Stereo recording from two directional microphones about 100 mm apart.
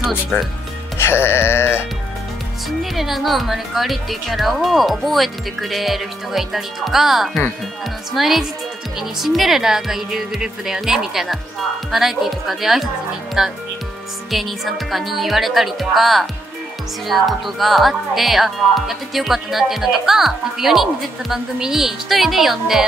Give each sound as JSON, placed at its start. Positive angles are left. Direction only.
{"t": 0.3, "sound": "speech", "side_deg": 15}
{"t": 0.9, "sound": "music", "side_deg": 25}
{"t": 2.8, "sound": "speech", "side_deg": 0}